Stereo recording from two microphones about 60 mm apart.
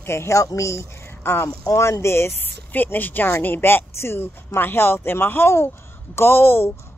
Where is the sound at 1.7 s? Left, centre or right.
Left.